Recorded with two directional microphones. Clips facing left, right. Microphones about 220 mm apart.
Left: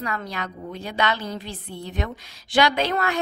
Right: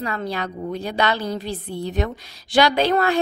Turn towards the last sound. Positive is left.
turn(degrees=-35)  # may be behind; listen again after turning